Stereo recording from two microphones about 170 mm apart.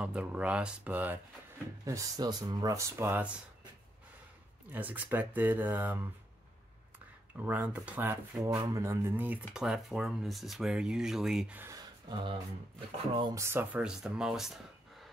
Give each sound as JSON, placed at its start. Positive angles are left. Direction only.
{"t": 0.0, "sound": "speech", "side_deg": -5}
{"t": 4.7, "sound": "speech", "side_deg": -10}
{"t": 7.3, "sound": "speech", "side_deg": -10}
{"t": 8.5, "sound": "speech", "side_deg": -20}
{"t": 13.3, "sound": "speech", "side_deg": -15}